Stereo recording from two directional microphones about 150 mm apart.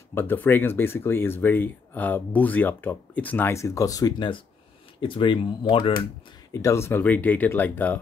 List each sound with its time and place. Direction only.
0.1 s speech: 15° left (ahead or behind); by 6.0 s 35° left (ahead or behind)
6.5 s speech: 20° left (ahead or behind)